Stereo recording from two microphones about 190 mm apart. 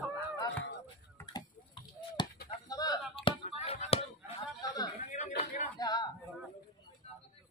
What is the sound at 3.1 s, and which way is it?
Chop, 30° left (ahead or behind).